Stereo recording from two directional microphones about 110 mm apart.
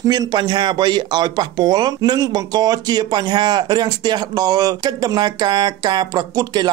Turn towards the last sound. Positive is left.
turn(degrees=-35)  # may be behind; listen again after turning